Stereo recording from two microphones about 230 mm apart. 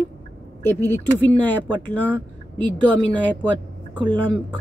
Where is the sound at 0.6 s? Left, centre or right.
Centre.